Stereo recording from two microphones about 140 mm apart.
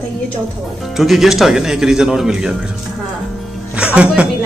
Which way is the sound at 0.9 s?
Centre (ahead or behind).